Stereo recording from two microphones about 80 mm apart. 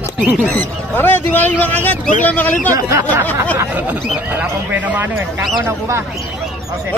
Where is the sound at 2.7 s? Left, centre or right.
Right.